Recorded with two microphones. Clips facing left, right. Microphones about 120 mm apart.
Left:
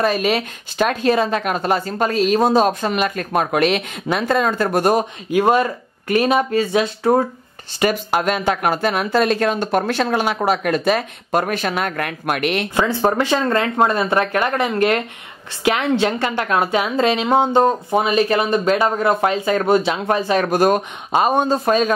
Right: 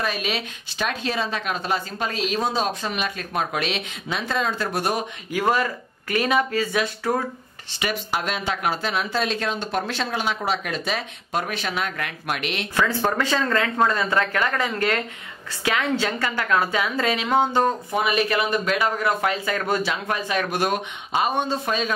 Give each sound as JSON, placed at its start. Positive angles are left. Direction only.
{"t": 0.0, "sound": "speech", "side_deg": 45}
{"t": 5.3, "sound": "a woman's voice", "side_deg": 25}
{"t": 7.8, "sound": "speech", "side_deg": 45}
{"t": 12.7, "sound": "a woman's voice", "side_deg": 25}